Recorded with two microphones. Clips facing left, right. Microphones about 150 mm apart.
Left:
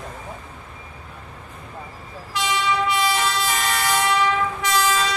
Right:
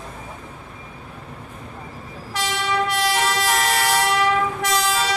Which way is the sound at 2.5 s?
60° right (ahead or behind).